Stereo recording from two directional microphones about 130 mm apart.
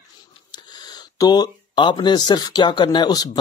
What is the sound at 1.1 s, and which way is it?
A man's voice, 30° left (ahead or behind).